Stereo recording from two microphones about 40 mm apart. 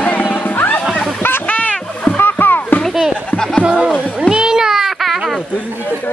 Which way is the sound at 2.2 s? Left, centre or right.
Left.